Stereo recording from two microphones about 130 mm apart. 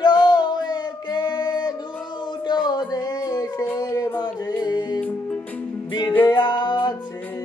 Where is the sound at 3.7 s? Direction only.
30° left (ahead or behind).